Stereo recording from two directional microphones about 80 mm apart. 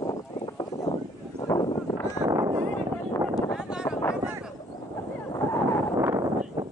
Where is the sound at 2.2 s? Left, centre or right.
Right.